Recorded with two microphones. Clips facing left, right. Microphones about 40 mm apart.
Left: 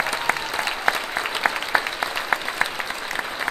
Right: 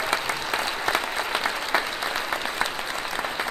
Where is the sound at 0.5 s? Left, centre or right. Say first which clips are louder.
Left 2 dB; left.